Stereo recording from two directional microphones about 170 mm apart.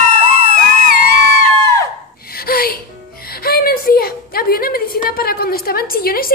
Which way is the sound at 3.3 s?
60° left (ahead or behind).